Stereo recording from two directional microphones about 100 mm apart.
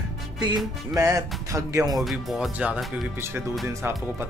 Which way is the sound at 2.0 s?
Centre (ahead or behind).